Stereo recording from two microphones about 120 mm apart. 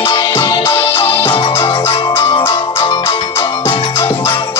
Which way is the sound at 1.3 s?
45° left (ahead or behind).